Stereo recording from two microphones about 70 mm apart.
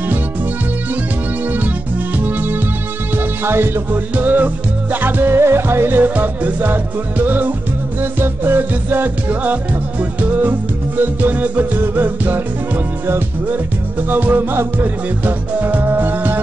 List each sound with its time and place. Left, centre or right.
2.1 s music: right